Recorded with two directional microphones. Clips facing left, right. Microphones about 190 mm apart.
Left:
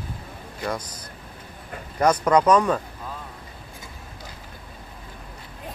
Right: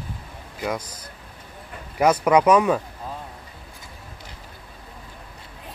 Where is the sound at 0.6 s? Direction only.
10° right (ahead or behind).